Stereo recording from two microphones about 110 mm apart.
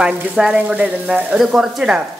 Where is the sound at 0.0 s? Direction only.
10° right (ahead or behind).